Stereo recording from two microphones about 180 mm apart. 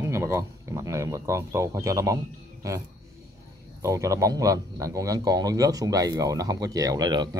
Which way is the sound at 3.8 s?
15° right (ahead or behind).